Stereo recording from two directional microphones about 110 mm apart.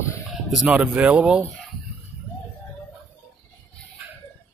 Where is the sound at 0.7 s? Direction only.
10° right (ahead or behind).